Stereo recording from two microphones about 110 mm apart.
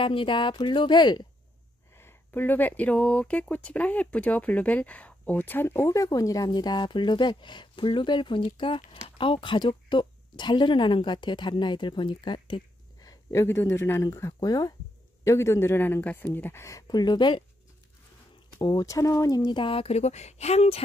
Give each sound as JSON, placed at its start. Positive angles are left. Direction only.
{"t": 0.0, "sound": "speech", "side_deg": 50}
{"t": 2.0, "sound": "speech", "side_deg": 20}
{"t": 13.0, "sound": "speech", "side_deg": 30}
{"t": 16.8, "sound": "speech", "side_deg": 40}
{"t": 18.6, "sound": "speech", "side_deg": 40}
{"t": 19.5, "sound": "speech", "side_deg": 55}